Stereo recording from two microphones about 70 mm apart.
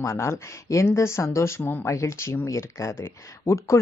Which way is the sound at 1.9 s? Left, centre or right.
Left.